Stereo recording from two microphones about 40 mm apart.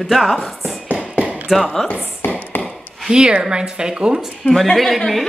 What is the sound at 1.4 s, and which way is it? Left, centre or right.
Speech, centre.